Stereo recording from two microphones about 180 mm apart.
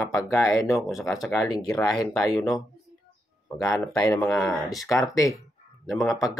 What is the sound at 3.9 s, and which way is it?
Speech, 5° left (ahead or behind).